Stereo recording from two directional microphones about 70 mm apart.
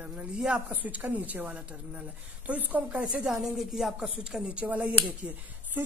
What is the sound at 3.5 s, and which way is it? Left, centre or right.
A woman's voice, centre.